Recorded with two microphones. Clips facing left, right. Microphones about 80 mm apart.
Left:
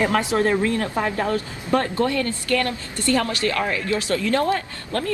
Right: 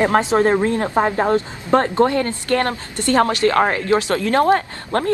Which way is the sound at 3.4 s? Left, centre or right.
Right.